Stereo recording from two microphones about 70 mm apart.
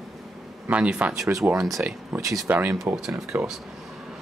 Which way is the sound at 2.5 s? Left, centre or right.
Right.